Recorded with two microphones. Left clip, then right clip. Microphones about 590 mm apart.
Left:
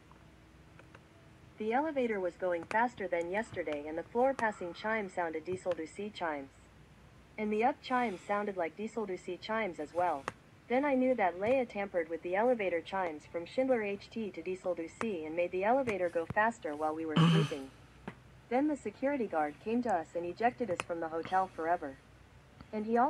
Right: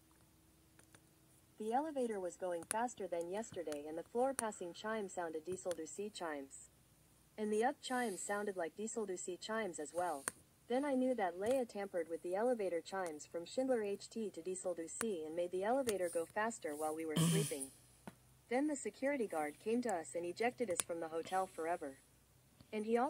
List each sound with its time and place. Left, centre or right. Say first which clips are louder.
1.7 s speech: left 6 dB; right
5.9 s speech: left 7 dB; right
17.1 s speech: left 7 dB; right
18.5 s speech: left 6 dB; right